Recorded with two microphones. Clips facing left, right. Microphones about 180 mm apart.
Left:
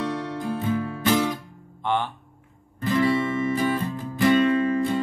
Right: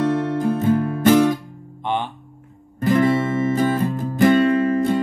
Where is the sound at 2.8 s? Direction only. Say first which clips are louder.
Right 5 dB; 50° right (ahead or behind).